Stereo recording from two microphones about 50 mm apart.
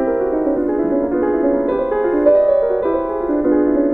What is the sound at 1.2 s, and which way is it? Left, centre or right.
Music, right.